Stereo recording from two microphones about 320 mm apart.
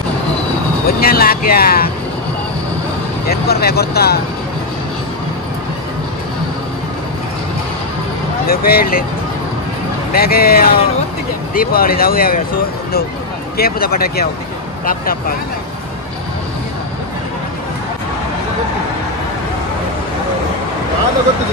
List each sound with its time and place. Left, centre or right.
0.8 s music: left
3.3 s speech: left
8.5 s speech: left
10.1 s speech: left
13.6 s speech: left